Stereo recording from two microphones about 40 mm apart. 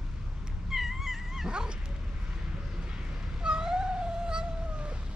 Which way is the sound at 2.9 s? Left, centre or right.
Right.